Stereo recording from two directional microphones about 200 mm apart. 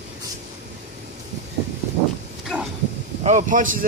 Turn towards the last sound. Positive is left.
turn(degrees=-40)  # may be behind; listen again after turning